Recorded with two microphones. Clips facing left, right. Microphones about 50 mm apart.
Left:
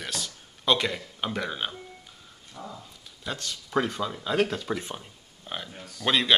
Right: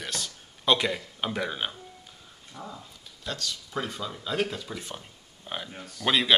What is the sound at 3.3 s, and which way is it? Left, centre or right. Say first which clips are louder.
Speech: even; centre.